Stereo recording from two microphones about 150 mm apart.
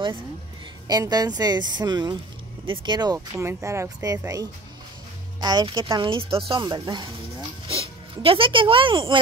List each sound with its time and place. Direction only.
0.8 s speech: 25° right (ahead or behind)